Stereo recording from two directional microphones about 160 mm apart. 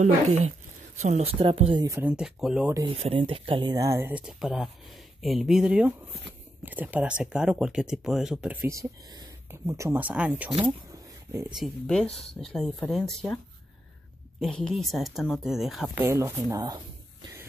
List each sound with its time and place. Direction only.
0.0 s speech: 45° right (ahead or behind)
1.4 s speech: 35° right (ahead or behind)
1.9 s speech: 15° right (ahead or behind)
2.1 s speech: 5° right (ahead or behind)
3.0 s speech: 35° right (ahead or behind); by 4.1 s 20° right (ahead or behind)
4.1 s speech: 5° right (ahead or behind)
10.9 s a sound: 15° right (ahead or behind)
11.5 s speech: centre (ahead or behind)
14.4 s speech: 5° left (ahead or behind)
16.0 s speech: 20° right (ahead or behind)